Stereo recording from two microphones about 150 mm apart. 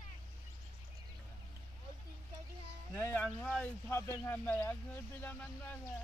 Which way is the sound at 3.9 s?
15° left (ahead or behind).